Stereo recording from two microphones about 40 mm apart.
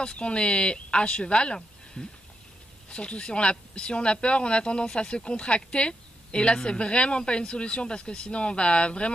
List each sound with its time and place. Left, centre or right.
0.0 s speech: left